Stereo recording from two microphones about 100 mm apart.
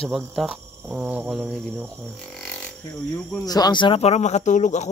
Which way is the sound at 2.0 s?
5° left (ahead or behind).